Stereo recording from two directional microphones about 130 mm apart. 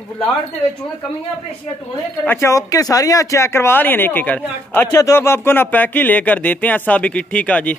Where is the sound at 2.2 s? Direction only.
20° left (ahead or behind).